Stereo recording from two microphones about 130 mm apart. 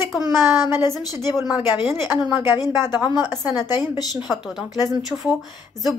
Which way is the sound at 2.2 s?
35° left (ahead or behind).